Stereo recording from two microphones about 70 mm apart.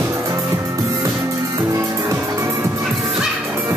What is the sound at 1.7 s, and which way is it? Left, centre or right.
Music, right.